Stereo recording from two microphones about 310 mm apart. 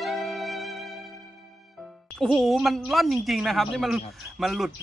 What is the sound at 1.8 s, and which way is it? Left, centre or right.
Speech, centre.